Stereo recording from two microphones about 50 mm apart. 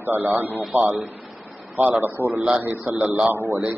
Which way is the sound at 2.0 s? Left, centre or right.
Right.